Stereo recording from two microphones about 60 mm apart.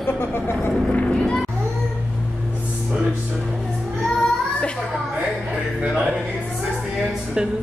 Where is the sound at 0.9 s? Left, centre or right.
Centre.